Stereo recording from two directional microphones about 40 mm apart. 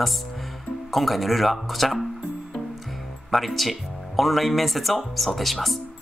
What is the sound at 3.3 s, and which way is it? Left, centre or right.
Speech, centre.